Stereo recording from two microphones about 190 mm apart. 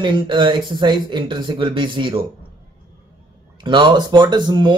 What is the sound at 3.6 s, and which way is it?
Speech, 25° right (ahead or behind).